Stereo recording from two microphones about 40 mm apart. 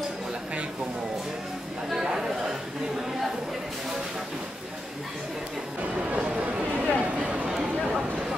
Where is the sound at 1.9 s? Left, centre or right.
Centre.